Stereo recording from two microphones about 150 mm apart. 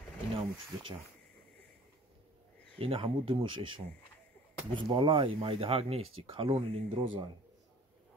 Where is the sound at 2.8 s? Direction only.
40° right (ahead or behind).